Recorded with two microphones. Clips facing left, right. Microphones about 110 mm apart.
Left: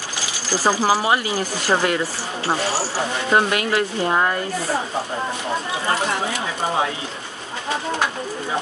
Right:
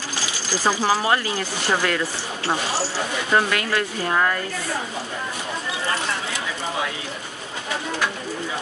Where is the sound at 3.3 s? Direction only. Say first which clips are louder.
Left 2 dB; 20° left (ahead or behind).